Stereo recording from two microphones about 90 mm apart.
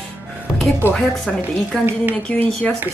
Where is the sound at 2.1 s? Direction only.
20° left (ahead or behind).